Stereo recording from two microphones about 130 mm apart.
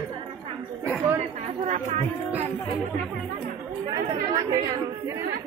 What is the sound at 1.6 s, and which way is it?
Speech, 60° right (ahead or behind).